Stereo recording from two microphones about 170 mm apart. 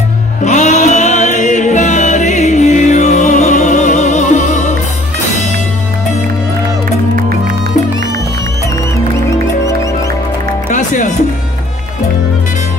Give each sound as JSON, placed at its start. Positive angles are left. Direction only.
{"t": 0.5, "sound": "music", "side_deg": 45}
{"t": 10.7, "sound": "music", "side_deg": 45}